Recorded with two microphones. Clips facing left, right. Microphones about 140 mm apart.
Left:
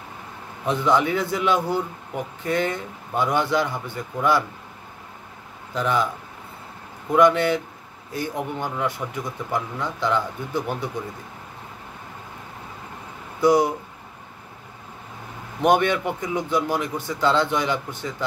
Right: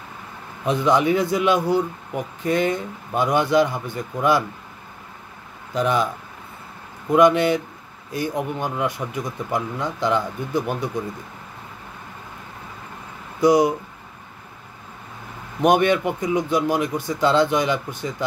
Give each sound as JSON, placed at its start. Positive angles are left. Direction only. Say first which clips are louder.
{"t": 0.7, "sound": "a man's voice", "louder": "right 2 dB", "side_deg": -15}
{"t": 5.8, "sound": "a man's voice", "louder": "right 2 dB", "side_deg": -15}
{"t": 7.1, "sound": "a man's voice", "louder": "right 2 dB", "side_deg": -15}
{"t": 13.4, "sound": "speech", "louder": "right 2 dB", "side_deg": -15}
{"t": 15.6, "sound": "a man's voice", "louder": "right 2 dB", "side_deg": -15}